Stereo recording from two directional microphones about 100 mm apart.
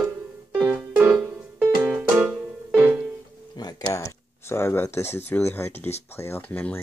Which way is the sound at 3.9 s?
25° left (ahead or behind).